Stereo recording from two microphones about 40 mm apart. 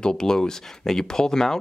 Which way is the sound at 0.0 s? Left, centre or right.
Centre.